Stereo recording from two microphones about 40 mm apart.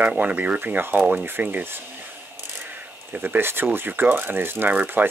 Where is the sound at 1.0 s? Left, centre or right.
Right.